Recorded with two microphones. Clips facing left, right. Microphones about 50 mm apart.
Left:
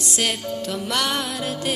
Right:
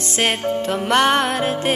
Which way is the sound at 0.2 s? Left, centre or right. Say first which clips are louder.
Right 6 dB; right.